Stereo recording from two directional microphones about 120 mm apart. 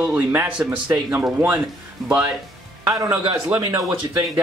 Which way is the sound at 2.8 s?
30° right (ahead or behind).